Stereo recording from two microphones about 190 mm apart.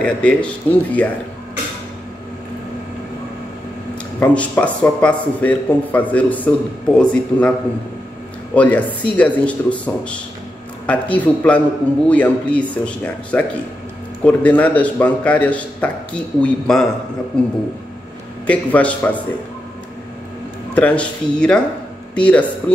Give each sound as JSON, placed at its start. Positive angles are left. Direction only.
{"t": 0.0, "sound": "a man's voice", "side_deg": 5}
{"t": 4.2, "sound": "a man's voice", "side_deg": 5}
{"t": 8.5, "sound": "a man's voice", "side_deg": 10}
{"t": 18.5, "sound": "a man's voice", "side_deg": 5}
{"t": 20.7, "sound": "a man's voice", "side_deg": 5}